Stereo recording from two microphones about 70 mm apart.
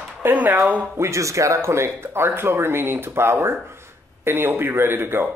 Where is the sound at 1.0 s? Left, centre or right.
Right.